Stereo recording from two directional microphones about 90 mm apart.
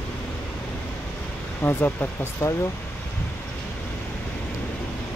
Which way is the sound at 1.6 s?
25° left (ahead or behind).